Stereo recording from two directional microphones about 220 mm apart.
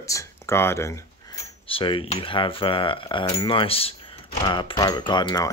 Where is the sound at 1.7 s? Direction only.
25° left (ahead or behind).